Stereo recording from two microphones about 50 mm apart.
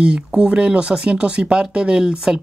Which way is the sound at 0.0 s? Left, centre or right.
Centre.